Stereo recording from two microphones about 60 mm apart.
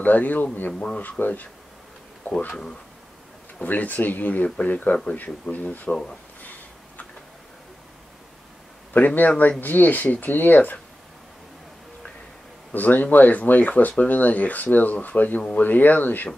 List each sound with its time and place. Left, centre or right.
0.0 s speech: left
3.6 s speech: left
6.4 s a sound: left
8.9 s speech: left
12.7 s speech: left